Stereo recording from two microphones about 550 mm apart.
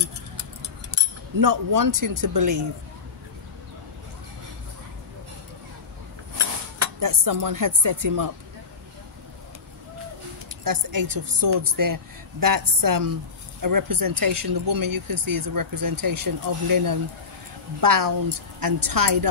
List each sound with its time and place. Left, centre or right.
1.4 s speech: right
6.8 s speech: right
10.6 s speech: right